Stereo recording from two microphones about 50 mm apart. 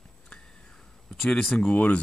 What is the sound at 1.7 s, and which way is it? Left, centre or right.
Speech, left.